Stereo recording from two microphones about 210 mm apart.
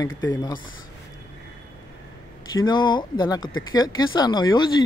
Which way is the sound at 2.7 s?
20° left (ahead or behind).